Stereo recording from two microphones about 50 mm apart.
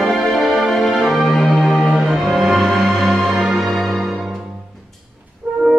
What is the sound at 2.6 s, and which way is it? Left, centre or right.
Music, centre.